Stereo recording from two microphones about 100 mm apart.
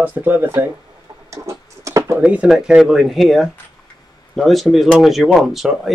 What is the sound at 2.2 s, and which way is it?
Speech, 10° right (ahead or behind).